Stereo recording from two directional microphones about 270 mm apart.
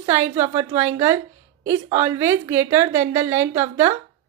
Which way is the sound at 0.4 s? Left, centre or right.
Centre.